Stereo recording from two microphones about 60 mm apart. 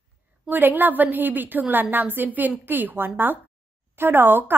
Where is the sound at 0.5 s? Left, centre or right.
Right.